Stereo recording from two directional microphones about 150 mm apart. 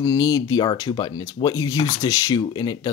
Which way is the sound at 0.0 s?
25° left (ahead or behind).